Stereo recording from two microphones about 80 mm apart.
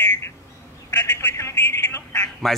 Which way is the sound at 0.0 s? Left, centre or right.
Left.